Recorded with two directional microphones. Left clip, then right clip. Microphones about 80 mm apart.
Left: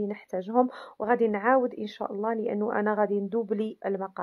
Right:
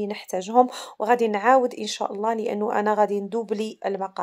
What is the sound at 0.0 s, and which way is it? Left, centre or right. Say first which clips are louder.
Speech: right 4 dB; right.